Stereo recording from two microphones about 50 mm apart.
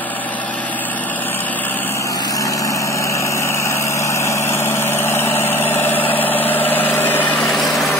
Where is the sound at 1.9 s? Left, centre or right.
Left.